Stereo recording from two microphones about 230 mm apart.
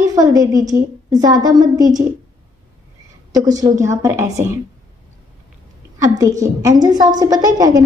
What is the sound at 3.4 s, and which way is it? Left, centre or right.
A woman's voice, centre.